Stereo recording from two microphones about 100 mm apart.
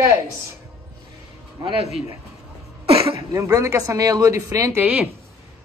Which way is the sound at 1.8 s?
90° left.